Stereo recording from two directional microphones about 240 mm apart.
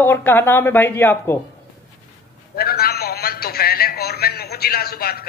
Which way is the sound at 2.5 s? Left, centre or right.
Left.